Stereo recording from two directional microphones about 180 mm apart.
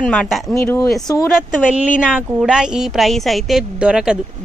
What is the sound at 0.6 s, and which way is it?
Speech, 15° left (ahead or behind).